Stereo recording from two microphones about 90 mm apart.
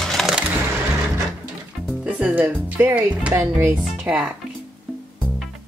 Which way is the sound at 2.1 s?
15° right (ahead or behind).